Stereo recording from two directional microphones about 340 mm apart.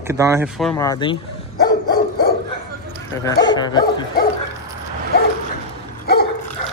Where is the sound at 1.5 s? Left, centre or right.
Left.